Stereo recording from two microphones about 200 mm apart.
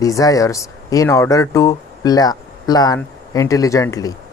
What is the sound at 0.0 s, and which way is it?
Speech, 15° left (ahead or behind).